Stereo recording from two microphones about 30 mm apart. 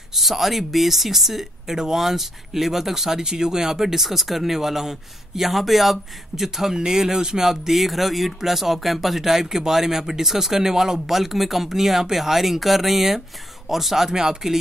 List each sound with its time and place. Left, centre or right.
0.1 s speech: centre
7.4 s speech: centre
14.1 s speech: centre